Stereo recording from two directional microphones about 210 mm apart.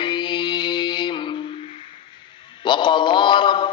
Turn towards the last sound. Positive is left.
turn(degrees=25)  # may be behind; listen again after turning